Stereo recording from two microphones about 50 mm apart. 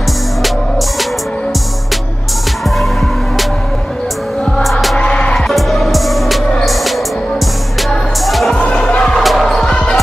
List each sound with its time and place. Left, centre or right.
4.6 s music: centre
4.9 s music: left
5.5 s music: centre
8.3 s music: centre
8.5 s music: centre
9.2 s basketball bounce: centre
9.7 s basketball bounce: centre